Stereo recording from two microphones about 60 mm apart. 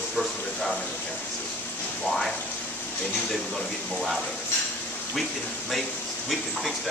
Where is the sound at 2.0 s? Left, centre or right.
Centre.